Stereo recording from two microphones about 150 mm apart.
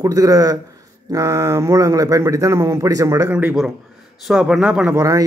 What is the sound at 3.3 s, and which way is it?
A man's voice, 5° right (ahead or behind).